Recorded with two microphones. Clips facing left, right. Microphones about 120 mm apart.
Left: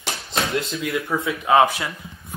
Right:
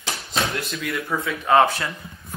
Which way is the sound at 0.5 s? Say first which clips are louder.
Left 4 dB; 20° left (ahead or behind).